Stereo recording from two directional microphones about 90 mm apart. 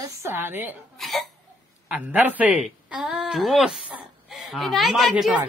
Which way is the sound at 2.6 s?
5° right (ahead or behind).